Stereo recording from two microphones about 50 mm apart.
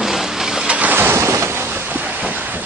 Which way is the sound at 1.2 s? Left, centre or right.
Right.